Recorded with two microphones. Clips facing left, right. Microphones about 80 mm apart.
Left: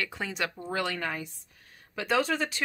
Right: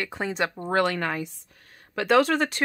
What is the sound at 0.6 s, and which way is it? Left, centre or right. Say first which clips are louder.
Speech: right 9 dB; right.